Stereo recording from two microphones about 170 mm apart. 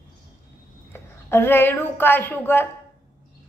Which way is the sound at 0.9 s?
15° left (ahead or behind).